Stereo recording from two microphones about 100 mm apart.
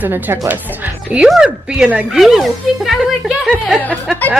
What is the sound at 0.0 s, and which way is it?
Speech, 20° right (ahead or behind).